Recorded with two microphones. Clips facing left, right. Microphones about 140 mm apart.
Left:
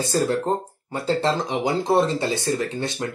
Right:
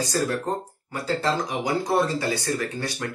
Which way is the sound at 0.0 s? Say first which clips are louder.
Left 3 dB; 25° left (ahead or behind).